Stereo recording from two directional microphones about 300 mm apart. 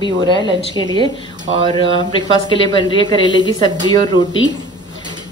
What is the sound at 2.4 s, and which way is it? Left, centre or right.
A woman's voice, centre.